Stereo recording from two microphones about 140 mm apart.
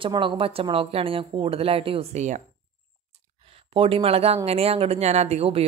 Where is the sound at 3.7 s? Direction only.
40° right (ahead or behind).